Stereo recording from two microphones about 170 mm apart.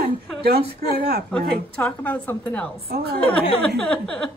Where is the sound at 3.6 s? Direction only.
5° left (ahead or behind).